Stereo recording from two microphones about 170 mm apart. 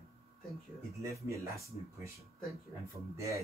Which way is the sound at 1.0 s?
15° right (ahead or behind).